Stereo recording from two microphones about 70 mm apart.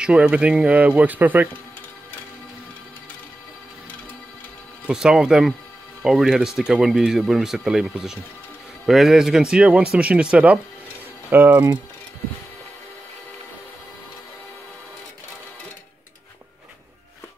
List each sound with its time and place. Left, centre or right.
0.0 s speech: centre
4.8 s speech: centre
11.2 s speech: right